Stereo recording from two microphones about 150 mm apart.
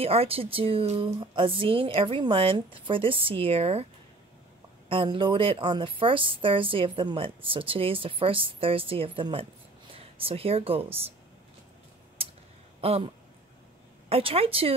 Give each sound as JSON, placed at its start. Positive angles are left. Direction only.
{"t": 0.0, "sound": "a woman's voice", "side_deg": -40}
{"t": 4.8, "sound": "a woman's voice", "side_deg": -35}
{"t": 12.2, "sound": "a sound", "side_deg": -40}
{"t": 12.8, "sound": "a woman's voice", "side_deg": -40}